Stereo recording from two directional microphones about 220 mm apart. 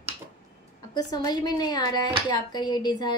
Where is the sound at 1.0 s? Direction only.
20° left (ahead or behind).